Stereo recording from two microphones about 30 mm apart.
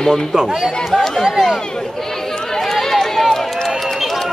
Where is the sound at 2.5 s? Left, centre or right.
Centre.